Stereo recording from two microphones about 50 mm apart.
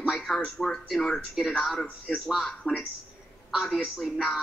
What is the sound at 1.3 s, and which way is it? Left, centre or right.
Speech, centre.